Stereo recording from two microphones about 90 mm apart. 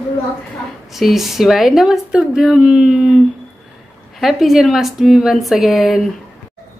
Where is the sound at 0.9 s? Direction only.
Centre (ahead or behind).